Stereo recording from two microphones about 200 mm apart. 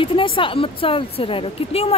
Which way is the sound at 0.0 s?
25° left (ahead or behind).